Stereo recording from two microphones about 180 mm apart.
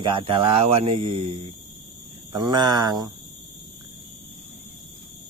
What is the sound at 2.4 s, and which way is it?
Speech, 20° right (ahead or behind).